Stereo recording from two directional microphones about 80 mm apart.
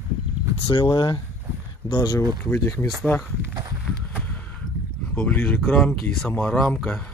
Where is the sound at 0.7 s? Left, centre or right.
Left.